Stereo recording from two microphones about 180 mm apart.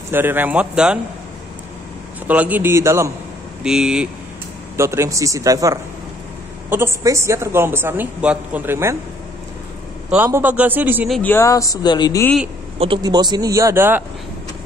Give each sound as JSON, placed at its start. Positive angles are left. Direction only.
{"t": 0.1, "sound": "a woman's voice", "side_deg": -10}
{"t": 2.2, "sound": "a woman's voice", "side_deg": -10}
{"t": 3.6, "sound": "speech", "side_deg": -5}
{"t": 4.7, "sound": "a woman's voice", "side_deg": -15}
{"t": 10.0, "sound": "a woman's voice", "side_deg": -10}
{"t": 11.1, "sound": "speech", "side_deg": 5}
{"t": 11.3, "sound": "speech", "side_deg": 20}
{"t": 12.7, "sound": "speech", "side_deg": -30}